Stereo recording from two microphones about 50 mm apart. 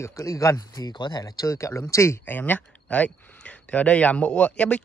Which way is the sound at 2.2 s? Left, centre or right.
Left.